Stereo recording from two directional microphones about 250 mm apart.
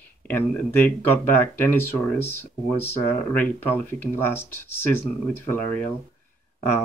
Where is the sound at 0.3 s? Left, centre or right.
Centre.